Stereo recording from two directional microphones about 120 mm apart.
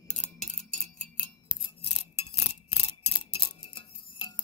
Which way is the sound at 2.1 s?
60° left (ahead or behind).